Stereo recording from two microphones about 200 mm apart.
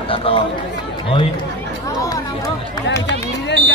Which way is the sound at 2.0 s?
15° left (ahead or behind).